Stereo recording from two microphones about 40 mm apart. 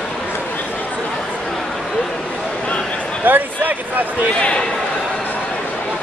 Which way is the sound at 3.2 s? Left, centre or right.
Right.